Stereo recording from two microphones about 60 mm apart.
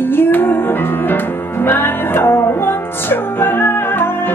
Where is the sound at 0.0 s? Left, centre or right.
Left.